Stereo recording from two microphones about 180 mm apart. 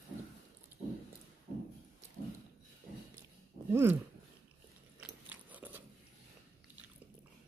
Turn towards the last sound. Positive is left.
turn(degrees=-10)  # may be behind; listen again after turning